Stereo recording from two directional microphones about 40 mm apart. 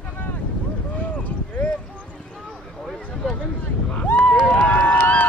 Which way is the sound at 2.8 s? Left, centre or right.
Centre.